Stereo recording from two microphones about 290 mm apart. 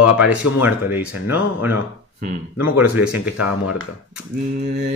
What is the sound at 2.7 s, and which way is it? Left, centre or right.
Speech, centre.